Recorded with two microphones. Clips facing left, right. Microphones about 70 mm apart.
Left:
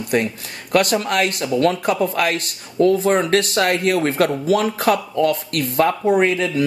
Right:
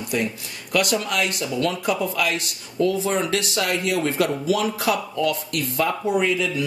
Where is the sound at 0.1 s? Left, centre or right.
Left.